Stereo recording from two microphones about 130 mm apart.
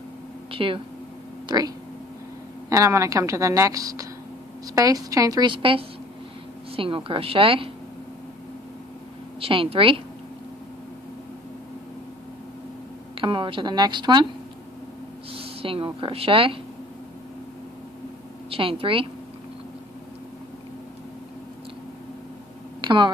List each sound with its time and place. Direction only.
0.5 s speech: 45° right (ahead or behind)
2.7 s a woman's voice: 25° right (ahead or behind)
5.5 s speech: 40° right (ahead or behind)
9.4 s speech: 45° right (ahead or behind)
13.1 s a woman's voice: 40° right (ahead or behind)
15.3 s speech: 45° right (ahead or behind)
18.5 s speech: 45° right (ahead or behind)
22.8 s a sound: 35° right (ahead or behind)